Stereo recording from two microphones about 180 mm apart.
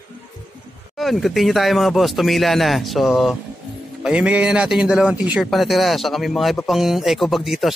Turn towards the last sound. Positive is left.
turn(degrees=0)  # may be behind; listen again after turning